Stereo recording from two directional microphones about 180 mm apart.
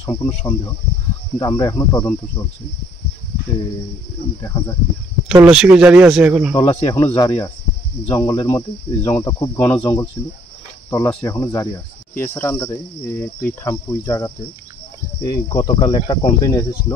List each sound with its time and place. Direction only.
0.0 s speech: 15° left (ahead or behind)
1.4 s cricket: 20° left (ahead or behind)
4.4 s speech: 15° left (ahead or behind)
5.3 s speech: 5° right (ahead or behind)
6.5 s cricket: 25° left (ahead or behind)
8.1 s speech: 10° left (ahead or behind)
9.2 s cricket: 20° left (ahead or behind)
10.9 s speech: 20° left (ahead or behind)
15.2 s cricket: 20° left (ahead or behind)